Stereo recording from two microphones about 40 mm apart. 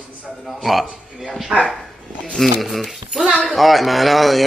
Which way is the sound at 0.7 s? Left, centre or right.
Centre.